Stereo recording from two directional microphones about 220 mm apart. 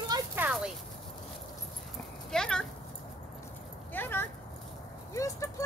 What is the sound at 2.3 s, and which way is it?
Clip-clop, 5° left (ahead or behind).